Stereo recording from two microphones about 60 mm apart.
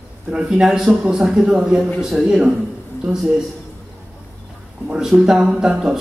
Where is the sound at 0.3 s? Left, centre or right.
Centre.